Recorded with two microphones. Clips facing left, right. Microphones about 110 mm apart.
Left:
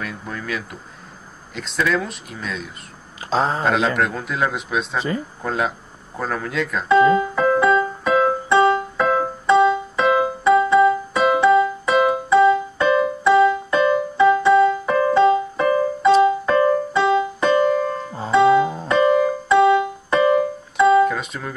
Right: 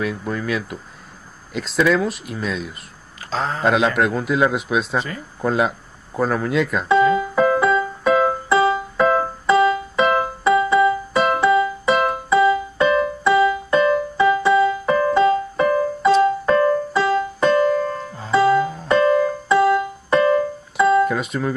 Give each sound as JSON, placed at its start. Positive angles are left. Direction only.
{"t": 0.0, "sound": "a man's voice", "side_deg": 0}
{"t": 3.3, "sound": "speech", "side_deg": 25}
{"t": 3.6, "sound": "a man's voice", "side_deg": -5}
{"t": 6.1, "sound": "keyboard", "side_deg": -5}
{"t": 18.3, "sound": "music", "side_deg": 0}
{"t": 18.9, "sound": "keyboard", "side_deg": 0}